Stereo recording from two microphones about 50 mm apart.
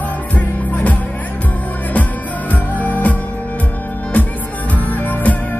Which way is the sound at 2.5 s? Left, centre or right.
Left.